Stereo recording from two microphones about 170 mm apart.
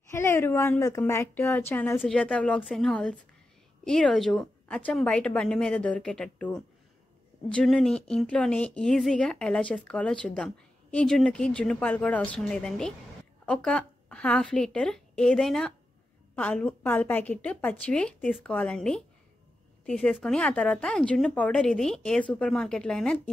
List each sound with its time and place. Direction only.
0.1 s a woman's voice: 15° left (ahead or behind)